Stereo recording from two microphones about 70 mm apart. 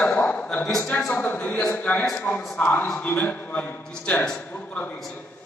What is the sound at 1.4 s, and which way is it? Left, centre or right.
A man's voice, centre.